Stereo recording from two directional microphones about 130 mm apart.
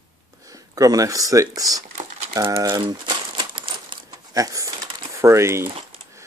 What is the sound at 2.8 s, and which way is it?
Crumpling, 35° right (ahead or behind).